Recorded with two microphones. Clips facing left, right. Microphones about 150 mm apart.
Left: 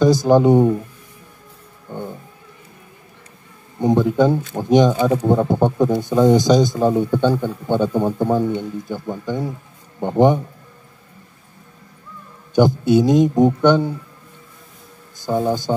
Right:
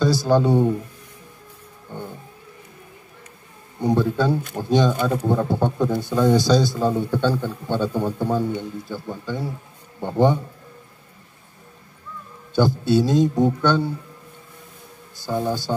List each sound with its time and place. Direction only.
0.0 s speech: 20° left (ahead or behind)
3.8 s speech: 20° left (ahead or behind)
12.5 s speech: 15° left (ahead or behind)
15.2 s speech: 20° left (ahead or behind)